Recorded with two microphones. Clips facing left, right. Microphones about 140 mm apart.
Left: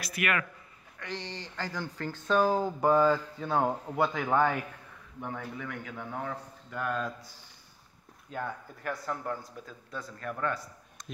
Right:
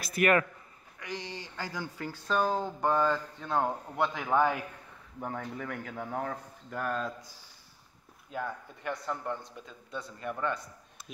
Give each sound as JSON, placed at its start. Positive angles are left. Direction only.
{"t": 0.2, "sound": "speech", "side_deg": -40}
{"t": 0.9, "sound": "speech", "side_deg": -10}
{"t": 5.2, "sound": "speech", "side_deg": -40}
{"t": 8.3, "sound": "speech", "side_deg": 0}